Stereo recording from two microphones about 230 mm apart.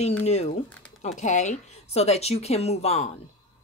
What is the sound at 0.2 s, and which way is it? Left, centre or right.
Speech, left.